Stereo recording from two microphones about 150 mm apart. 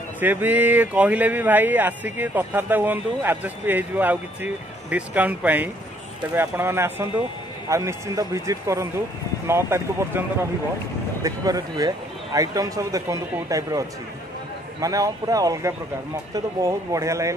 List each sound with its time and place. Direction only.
0.2 s speech: 15° right (ahead or behind)
11.2 s speech: 25° right (ahead or behind)